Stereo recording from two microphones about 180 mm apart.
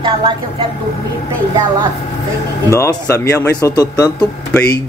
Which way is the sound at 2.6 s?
15° left (ahead or behind).